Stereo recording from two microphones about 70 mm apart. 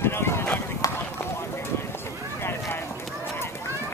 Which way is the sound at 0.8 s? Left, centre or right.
Left.